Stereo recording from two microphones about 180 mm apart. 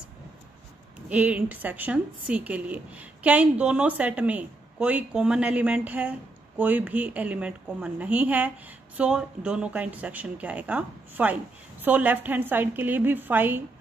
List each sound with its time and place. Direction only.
1.0 s a woman's voice: 5° right (ahead or behind)